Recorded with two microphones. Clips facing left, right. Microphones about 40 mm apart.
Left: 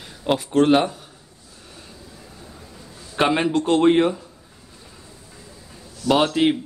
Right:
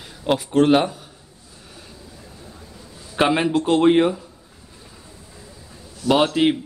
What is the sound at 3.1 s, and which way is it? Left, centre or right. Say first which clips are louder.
A man's voice: right 1 dB; centre.